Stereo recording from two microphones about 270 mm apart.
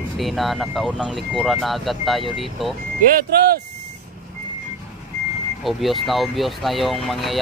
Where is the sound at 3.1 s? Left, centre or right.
Right.